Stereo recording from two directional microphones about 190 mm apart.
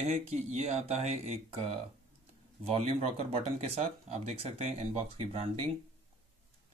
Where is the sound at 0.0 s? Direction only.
35° right (ahead or behind).